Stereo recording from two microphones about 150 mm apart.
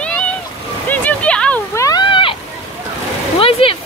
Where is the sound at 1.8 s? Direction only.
25° left (ahead or behind).